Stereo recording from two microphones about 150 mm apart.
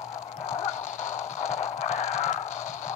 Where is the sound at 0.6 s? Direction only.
50° left (ahead or behind).